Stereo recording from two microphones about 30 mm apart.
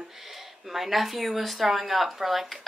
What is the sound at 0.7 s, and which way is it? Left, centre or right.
A woman's voice, centre.